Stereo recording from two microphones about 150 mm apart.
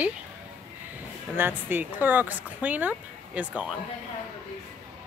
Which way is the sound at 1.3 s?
15° right (ahead or behind).